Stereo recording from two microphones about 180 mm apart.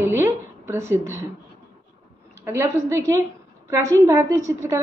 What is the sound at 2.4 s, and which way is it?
A woman's voice, 15° right (ahead or behind).